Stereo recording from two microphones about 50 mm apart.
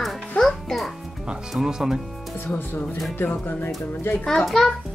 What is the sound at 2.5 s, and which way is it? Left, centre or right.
Speech, left.